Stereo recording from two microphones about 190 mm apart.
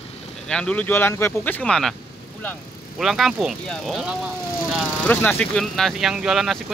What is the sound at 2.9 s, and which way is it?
Speech, centre (ahead or behind).